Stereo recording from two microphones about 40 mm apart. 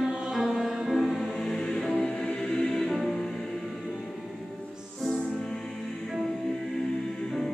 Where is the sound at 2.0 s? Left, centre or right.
Centre.